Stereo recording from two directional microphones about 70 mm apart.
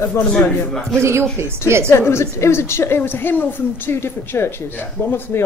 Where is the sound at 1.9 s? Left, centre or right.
Left.